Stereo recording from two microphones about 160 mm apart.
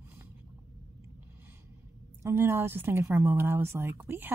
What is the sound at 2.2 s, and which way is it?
Speech, 15° right (ahead or behind).